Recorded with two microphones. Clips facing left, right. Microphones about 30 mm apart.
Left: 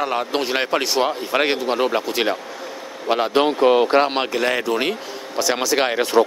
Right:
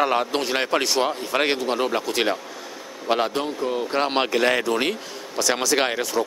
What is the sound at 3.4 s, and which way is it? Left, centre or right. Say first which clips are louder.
Speech: left 10 dB; left.